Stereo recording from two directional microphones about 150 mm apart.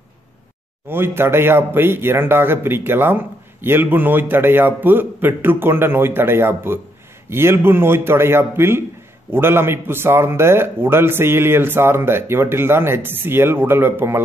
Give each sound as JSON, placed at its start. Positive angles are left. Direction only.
{"t": 0.8, "sound": "a man's voice", "side_deg": -15}